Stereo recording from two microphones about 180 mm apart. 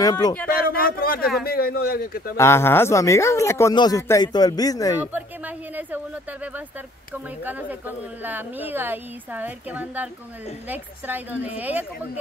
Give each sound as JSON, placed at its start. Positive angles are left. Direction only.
{"t": 0.0, "sound": "speech", "side_deg": 20}
{"t": 0.5, "sound": "a man's voice", "side_deg": 55}
{"t": 2.3, "sound": "speech", "side_deg": 15}
{"t": 8.2, "sound": "a woman's voice", "side_deg": -10}